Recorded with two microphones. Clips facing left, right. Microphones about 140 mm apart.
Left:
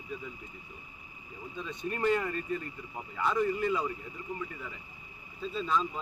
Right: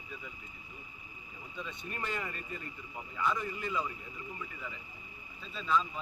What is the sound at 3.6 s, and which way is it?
Speech, 45° left (ahead or behind).